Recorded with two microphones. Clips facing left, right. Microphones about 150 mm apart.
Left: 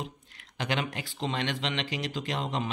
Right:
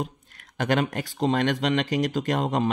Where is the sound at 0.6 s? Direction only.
45° right (ahead or behind).